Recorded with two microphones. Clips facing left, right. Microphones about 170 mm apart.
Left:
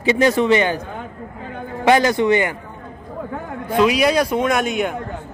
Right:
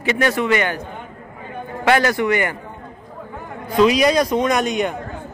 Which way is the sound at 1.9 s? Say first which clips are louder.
Left 2 dB; 20° left (ahead or behind).